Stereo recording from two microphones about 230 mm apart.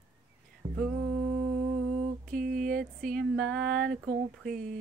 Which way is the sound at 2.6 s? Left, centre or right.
Right.